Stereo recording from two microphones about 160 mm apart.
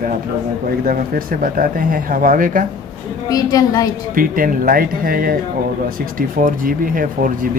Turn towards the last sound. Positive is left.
turn(degrees=-60)  # may be behind; listen again after turning